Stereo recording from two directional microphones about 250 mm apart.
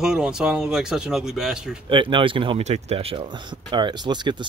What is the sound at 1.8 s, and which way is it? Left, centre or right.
Speech, centre.